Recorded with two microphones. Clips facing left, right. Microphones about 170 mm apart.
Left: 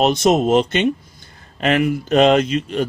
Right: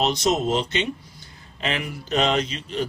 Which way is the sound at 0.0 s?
55° left (ahead or behind).